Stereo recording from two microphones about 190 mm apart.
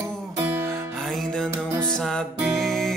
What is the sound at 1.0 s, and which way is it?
Music, centre (ahead or behind).